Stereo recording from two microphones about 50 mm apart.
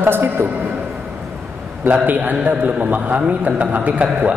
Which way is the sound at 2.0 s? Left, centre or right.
Right.